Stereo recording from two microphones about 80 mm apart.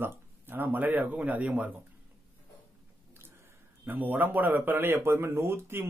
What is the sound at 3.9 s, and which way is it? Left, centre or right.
Speech, right.